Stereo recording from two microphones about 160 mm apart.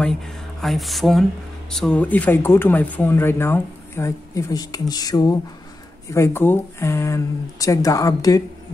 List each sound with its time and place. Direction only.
0.0 s speech: 5° left (ahead or behind); by 8.4 s 20° left (ahead or behind)